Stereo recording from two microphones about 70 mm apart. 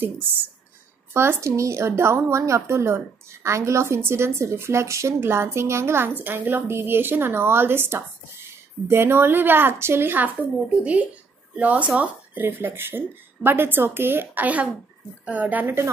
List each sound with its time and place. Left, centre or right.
0.0 s speech: right
1.1 s a woman's voice: right